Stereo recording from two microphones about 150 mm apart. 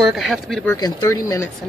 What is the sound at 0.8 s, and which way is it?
Speech, 25° left (ahead or behind).